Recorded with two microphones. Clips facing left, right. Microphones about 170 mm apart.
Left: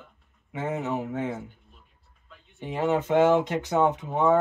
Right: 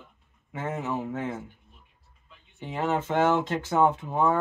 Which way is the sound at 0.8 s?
20° left (ahead or behind).